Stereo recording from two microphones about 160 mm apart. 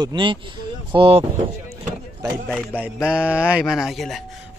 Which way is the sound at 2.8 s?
5° right (ahead or behind).